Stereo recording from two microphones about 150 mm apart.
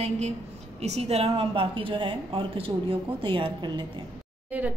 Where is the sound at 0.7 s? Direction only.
45° right (ahead or behind).